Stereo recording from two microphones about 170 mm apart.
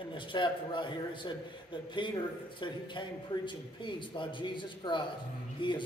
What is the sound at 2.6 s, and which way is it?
A man's voice, 30° left (ahead or behind).